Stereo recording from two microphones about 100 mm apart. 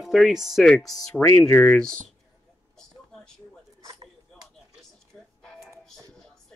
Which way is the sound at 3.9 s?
40° right (ahead or behind).